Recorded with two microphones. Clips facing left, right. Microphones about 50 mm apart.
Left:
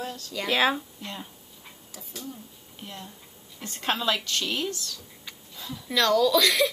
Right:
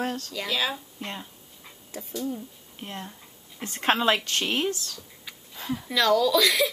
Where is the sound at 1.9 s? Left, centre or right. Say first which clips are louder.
Right 9 dB; right.